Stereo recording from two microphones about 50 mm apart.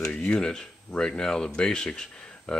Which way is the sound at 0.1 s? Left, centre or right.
Left.